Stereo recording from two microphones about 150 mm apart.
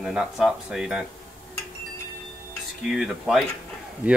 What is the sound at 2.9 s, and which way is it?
Speech, centre (ahead or behind).